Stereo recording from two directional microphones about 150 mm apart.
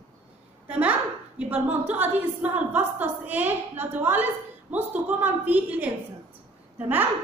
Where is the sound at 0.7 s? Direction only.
10° right (ahead or behind).